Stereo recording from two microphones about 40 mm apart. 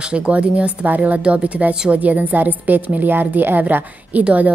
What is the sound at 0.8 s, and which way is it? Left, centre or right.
Speech, right.